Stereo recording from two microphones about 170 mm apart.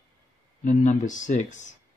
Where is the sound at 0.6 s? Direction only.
45° left (ahead or behind).